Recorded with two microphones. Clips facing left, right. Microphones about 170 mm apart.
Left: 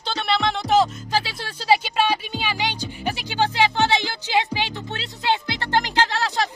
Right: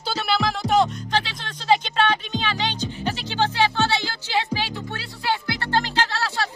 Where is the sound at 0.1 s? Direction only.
5° right (ahead or behind).